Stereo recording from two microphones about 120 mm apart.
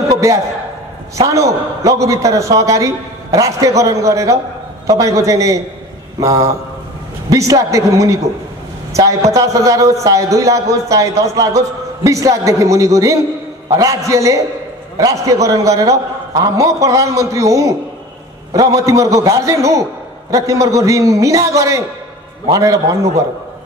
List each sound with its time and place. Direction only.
0.1 s a sound: 25° right (ahead or behind)
1.2 s a man's voice: 25° right (ahead or behind)
9.3 s a man's voice: 25° right (ahead or behind)